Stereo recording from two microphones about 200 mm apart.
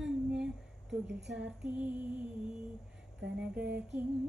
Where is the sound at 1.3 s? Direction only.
5° right (ahead or behind).